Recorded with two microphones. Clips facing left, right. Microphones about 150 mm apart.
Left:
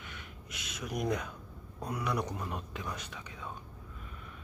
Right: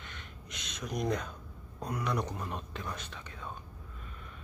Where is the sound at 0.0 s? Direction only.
10° left (ahead or behind).